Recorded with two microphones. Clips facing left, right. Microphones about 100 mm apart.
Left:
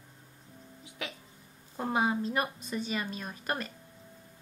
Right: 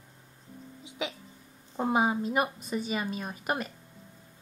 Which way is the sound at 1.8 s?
10° right (ahead or behind).